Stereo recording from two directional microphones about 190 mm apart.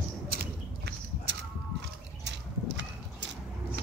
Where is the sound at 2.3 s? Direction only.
65° right (ahead or behind).